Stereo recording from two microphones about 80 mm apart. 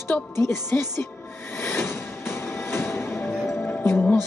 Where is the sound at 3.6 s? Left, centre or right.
Left.